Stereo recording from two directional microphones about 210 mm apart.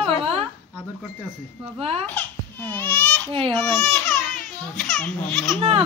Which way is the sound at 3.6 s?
5° left (ahead or behind).